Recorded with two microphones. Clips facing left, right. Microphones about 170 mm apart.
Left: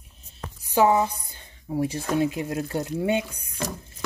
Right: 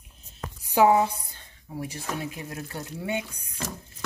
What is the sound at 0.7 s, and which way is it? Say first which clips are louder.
Speech: even; 10° right (ahead or behind).